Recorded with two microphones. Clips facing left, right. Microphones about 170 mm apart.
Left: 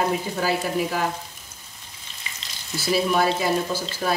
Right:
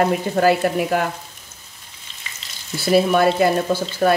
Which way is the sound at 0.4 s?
60° right (ahead or behind).